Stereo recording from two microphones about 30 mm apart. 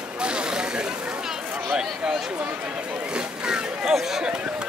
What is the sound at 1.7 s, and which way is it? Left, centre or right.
Speech, centre.